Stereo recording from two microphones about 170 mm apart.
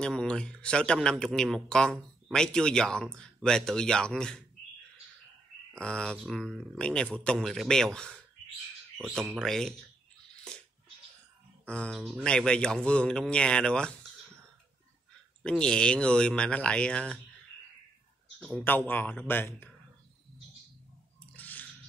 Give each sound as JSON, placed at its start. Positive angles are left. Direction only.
{"t": 0.0, "sound": "speech", "side_deg": 5}
{"t": 5.8, "sound": "speech", "side_deg": 5}
{"t": 8.9, "sound": "speech", "side_deg": -15}
{"t": 9.4, "sound": "speech", "side_deg": 5}
{"t": 10.3, "sound": "a sound", "side_deg": 5}
{"t": 11.6, "sound": "speech", "side_deg": 5}
{"t": 15.4, "sound": "speech", "side_deg": 5}
{"t": 18.6, "sound": "speech", "side_deg": 10}
{"t": 21.3, "sound": "squish", "side_deg": 10}